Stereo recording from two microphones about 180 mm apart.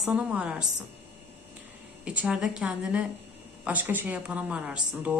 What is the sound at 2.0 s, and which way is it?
A woman's voice, 5° right (ahead or behind).